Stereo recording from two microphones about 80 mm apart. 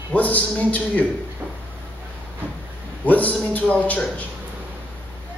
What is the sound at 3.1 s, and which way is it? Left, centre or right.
A man's voice, centre.